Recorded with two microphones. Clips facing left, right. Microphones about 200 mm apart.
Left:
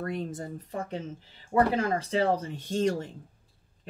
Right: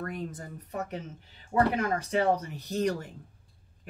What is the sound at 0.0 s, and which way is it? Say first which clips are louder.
Speech: left 3 dB; 25° left (ahead or behind).